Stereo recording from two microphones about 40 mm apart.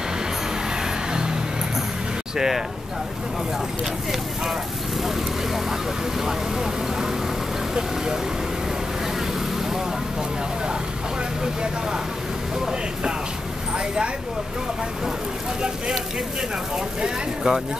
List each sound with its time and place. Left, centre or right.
1.1 s music: centre
2.3 s speech: centre
5.0 s speech: centre
11.4 s speech: centre
17.0 s speech: centre